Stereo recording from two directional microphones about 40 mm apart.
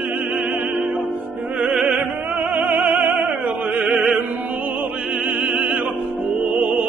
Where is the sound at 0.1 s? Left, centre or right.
Right.